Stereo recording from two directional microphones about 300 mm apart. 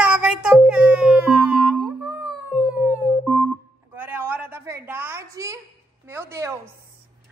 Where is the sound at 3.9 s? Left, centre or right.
Centre.